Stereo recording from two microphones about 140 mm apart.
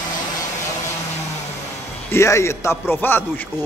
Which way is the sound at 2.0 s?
20° left (ahead or behind).